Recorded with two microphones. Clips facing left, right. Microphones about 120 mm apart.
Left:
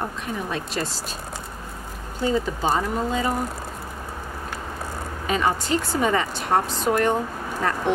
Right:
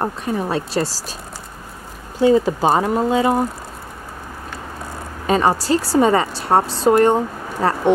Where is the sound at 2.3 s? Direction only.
40° right (ahead or behind).